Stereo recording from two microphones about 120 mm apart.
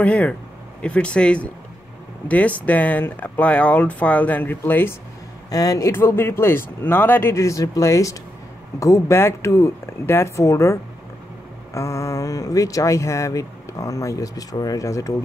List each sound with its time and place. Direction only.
0.0 s speech: 10° left (ahead or behind)
5.5 s speech: 30° left (ahead or behind)